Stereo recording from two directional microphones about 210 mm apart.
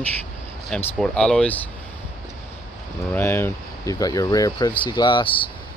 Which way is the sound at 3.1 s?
10° left (ahead or behind).